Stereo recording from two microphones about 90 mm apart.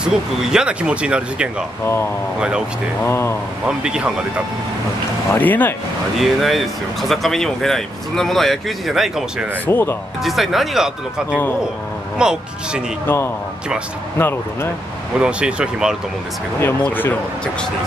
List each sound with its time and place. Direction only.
0.0 s speech: 5° right (ahead or behind)
3.0 s speech: 30° left (ahead or behind)
3.6 s speech: 10° right (ahead or behind)
5.3 s speech: 20° left (ahead or behind)
6.1 s speech: centre (ahead or behind)
9.7 s speech: 25° left (ahead or behind)
10.2 s speech: centre (ahead or behind)
13.0 s speech: 25° left (ahead or behind)
15.1 s speech: 10° right (ahead or behind)
16.5 s speech: 25° left (ahead or behind)